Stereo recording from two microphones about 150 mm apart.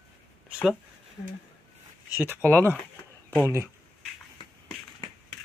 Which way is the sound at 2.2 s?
15° right (ahead or behind).